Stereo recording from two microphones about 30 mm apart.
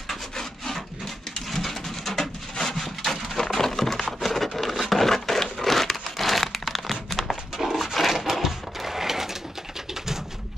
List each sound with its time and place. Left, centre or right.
0.1 s wood: centre
1.5 s a sound: centre
2.6 s wood: centre
3.5 s a sound: centre
4.7 s crumpling: centre
7.7 s sewing machine: centre